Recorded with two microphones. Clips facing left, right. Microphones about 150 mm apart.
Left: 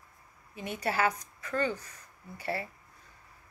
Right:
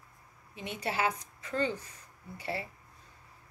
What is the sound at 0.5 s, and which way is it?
Speech, 45° left (ahead or behind).